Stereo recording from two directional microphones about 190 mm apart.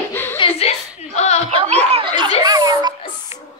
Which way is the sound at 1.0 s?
35° left (ahead or behind).